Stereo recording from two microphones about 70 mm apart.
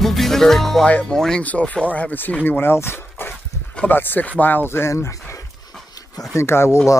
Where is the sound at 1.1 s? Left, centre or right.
Centre.